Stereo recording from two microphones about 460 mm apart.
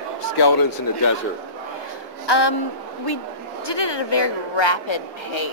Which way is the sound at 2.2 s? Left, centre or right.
Left.